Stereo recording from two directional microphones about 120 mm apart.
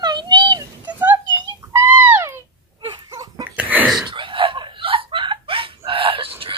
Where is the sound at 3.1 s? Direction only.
30° right (ahead or behind).